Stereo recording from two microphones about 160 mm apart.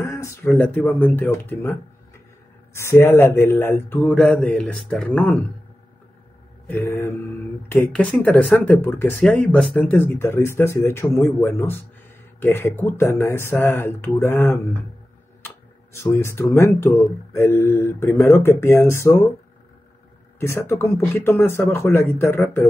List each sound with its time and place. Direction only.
0.0 s speech: 15° left (ahead or behind)
6.7 s speech: 15° left (ahead or behind)
20.3 s speech: 15° left (ahead or behind)